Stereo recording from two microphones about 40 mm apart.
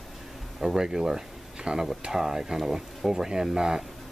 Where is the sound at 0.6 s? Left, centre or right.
Centre.